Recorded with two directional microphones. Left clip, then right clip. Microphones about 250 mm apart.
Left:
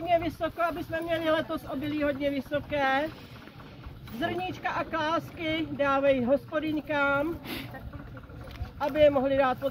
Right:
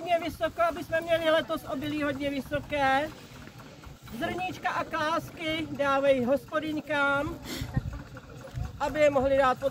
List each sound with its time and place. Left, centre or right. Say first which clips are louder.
0.0 s speech: left 1 dB; right
4.2 s speech: even; centre
8.7 s speech: left 2 dB; right